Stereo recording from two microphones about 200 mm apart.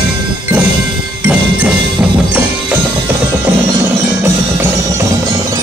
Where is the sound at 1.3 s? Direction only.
5° right (ahead or behind).